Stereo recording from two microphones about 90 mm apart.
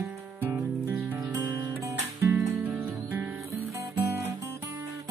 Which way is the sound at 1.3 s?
35° right (ahead or behind).